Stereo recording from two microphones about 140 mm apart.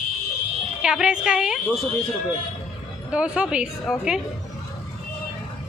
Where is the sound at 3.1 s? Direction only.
10° right (ahead or behind).